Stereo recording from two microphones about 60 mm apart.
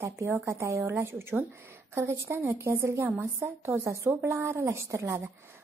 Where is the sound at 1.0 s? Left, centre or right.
Right.